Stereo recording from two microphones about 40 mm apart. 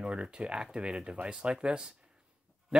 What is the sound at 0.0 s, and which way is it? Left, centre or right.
Speech, right.